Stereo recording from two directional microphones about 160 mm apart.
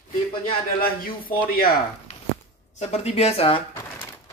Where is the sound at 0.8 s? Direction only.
65° left (ahead or behind).